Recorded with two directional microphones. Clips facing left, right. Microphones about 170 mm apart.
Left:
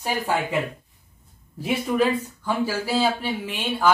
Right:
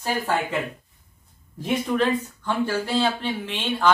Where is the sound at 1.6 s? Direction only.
10° left (ahead or behind).